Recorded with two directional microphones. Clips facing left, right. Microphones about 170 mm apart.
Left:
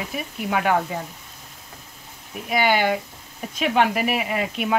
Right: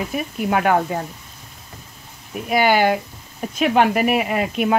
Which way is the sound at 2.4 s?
55° right (ahead or behind).